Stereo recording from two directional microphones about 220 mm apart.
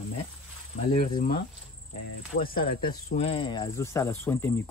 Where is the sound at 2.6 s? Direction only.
25° left (ahead or behind).